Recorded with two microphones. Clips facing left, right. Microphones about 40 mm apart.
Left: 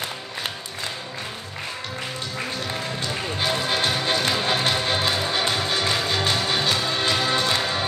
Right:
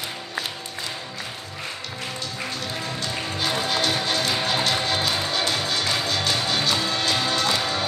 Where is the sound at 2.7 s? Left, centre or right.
Left.